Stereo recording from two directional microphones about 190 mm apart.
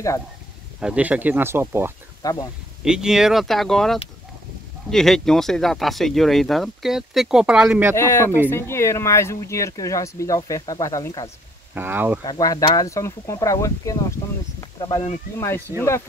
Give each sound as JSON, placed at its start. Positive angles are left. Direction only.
{"t": 0.7, "sound": "speech", "side_deg": -5}
{"t": 2.2, "sound": "speech", "side_deg": 20}
{"t": 2.8, "sound": "speech", "side_deg": -5}
{"t": 7.9, "sound": "speech", "side_deg": 15}
{"t": 11.7, "sound": "speech", "side_deg": -10}
{"t": 12.3, "sound": "speech", "side_deg": 20}